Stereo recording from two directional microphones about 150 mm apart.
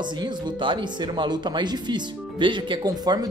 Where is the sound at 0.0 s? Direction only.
30° right (ahead or behind).